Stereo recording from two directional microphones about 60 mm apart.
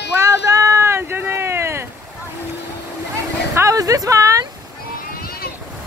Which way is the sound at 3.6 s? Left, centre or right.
Right.